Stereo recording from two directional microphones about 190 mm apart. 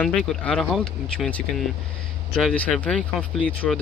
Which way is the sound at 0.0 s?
5° left (ahead or behind).